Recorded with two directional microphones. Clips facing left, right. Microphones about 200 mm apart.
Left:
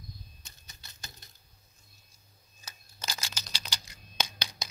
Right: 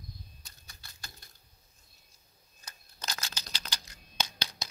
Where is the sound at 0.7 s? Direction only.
20° left (ahead or behind).